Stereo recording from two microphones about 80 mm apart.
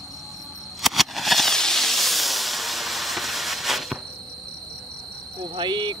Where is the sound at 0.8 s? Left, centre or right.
Centre.